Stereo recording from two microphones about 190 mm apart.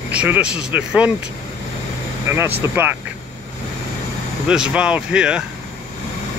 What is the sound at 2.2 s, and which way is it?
Speech, 15° right (ahead or behind).